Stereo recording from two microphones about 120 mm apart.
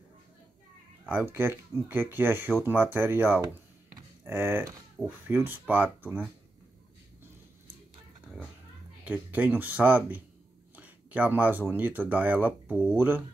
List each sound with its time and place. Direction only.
1.0 s speech: 15° right (ahead or behind)
9.0 s speech: 15° right (ahead or behind)
10.8 s a sound: 15° right (ahead or behind)
11.7 s speech: 15° right (ahead or behind)